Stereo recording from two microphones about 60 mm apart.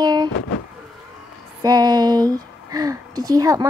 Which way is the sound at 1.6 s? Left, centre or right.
Right.